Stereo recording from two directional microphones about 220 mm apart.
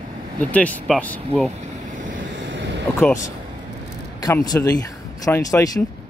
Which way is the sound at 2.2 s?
55° right (ahead or behind).